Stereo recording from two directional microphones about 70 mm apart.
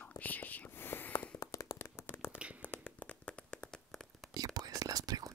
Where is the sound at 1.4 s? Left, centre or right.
Left.